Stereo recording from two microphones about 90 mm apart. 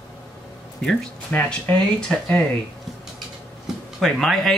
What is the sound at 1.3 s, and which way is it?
Speech, 15° left (ahead or behind).